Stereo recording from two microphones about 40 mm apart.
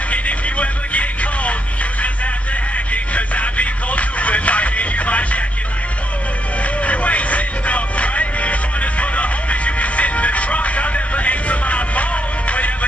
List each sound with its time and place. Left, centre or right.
0.1 s music: left
2.9 s music: left
6.8 s music: left